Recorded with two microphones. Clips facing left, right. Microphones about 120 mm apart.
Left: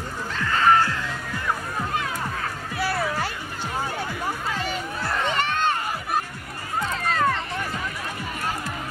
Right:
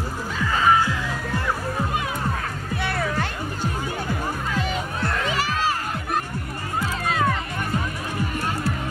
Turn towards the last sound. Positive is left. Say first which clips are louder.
# even
turn(degrees=-5)  # may be behind; listen again after turning